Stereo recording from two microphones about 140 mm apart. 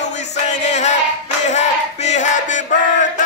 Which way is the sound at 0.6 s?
55° left (ahead or behind).